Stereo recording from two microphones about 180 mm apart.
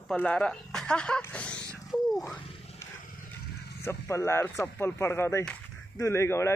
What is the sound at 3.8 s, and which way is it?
Speech, 15° left (ahead or behind).